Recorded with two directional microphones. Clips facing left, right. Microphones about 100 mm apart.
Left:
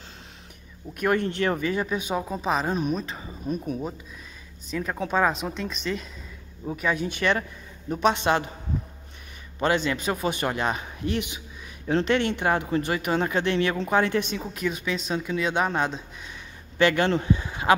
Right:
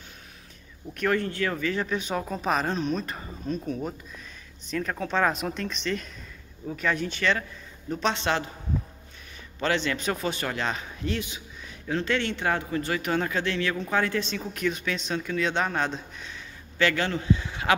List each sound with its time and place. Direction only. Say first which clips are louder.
0.9 s speech: left 2 dB; 20° left (ahead or behind)
5.3 s speech: even; centre (ahead or behind); by 8.5 s 15° left (ahead or behind)
9.6 s speech: left 3 dB; 15° left (ahead or behind)
14.5 s speech: right 1 dB; 5° left (ahead or behind); by 17.6 s 20° left (ahead or behind)